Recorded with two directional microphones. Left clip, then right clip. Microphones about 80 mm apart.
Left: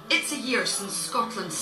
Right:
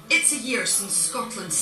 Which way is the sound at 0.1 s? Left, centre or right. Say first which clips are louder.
Right 3 dB; right.